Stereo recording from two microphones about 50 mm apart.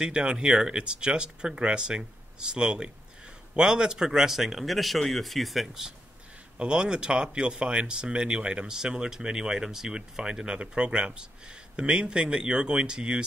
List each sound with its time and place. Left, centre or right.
0.0 s speech: centre